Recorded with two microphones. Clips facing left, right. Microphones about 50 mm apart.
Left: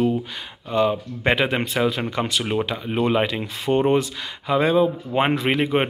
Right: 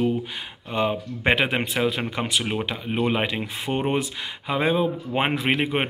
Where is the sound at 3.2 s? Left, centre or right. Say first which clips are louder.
Left 3 dB; right.